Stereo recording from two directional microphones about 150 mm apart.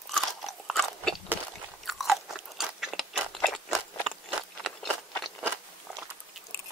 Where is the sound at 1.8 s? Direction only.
Centre (ahead or behind).